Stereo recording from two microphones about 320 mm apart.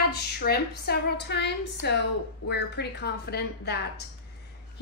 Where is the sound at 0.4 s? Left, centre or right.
Left.